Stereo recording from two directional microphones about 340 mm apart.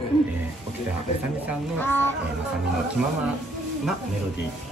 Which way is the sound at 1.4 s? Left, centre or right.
Centre.